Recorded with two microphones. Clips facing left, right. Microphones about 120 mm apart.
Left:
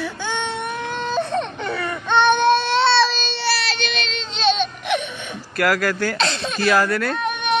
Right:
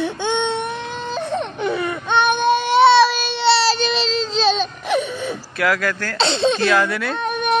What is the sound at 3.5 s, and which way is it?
Baby cry, 35° right (ahead or behind).